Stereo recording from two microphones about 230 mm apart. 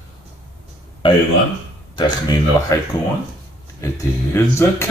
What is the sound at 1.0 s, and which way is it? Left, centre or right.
Speech, left.